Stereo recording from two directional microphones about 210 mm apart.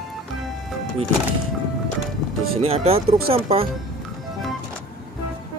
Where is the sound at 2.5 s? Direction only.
30° right (ahead or behind).